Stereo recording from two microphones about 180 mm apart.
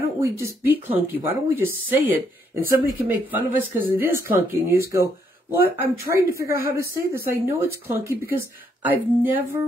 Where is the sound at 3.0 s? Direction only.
10° right (ahead or behind).